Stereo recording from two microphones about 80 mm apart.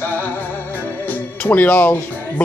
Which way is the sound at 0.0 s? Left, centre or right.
Left.